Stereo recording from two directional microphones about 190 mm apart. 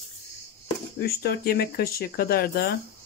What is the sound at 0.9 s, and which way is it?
Speech, 55° left (ahead or behind).